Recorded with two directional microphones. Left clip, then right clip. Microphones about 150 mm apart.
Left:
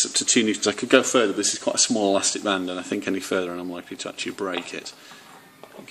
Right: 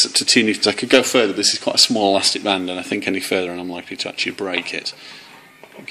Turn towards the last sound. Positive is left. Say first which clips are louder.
# right 8 dB
turn(degrees=35)  # may be behind; listen again after turning